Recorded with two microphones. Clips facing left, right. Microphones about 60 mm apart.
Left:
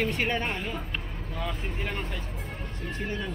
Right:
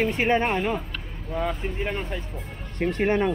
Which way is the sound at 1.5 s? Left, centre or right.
Centre.